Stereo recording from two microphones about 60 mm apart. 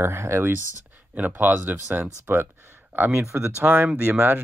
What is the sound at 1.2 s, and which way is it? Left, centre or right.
Speech, right.